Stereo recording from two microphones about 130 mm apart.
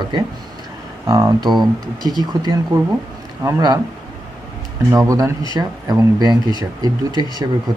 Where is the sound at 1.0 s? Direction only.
30° right (ahead or behind).